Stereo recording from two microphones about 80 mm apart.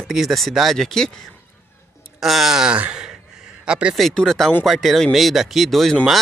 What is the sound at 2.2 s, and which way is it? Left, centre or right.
Speech, centre.